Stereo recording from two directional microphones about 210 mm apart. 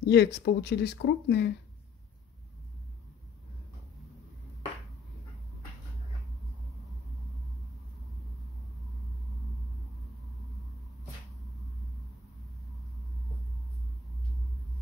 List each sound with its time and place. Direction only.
0.0 s speech: 55° left (ahead or behind)